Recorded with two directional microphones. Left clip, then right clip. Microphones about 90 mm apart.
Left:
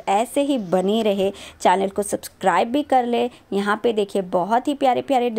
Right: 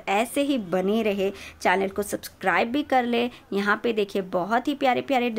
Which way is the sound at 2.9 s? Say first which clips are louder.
Left 4 dB; 35° left (ahead or behind).